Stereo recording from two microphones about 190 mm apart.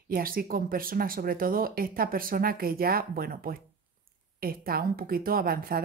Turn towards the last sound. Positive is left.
turn(degrees=-50)  # may be behind; listen again after turning